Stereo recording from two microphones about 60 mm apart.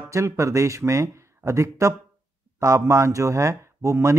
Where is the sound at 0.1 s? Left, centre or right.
Right.